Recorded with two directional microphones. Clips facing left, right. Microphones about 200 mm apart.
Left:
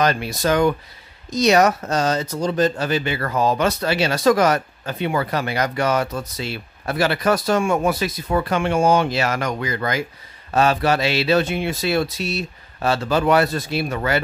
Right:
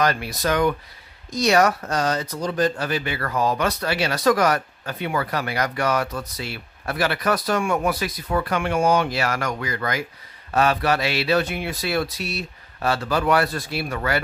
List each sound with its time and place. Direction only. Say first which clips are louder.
0.0 s speech: left 2 dB; 25° left (ahead or behind)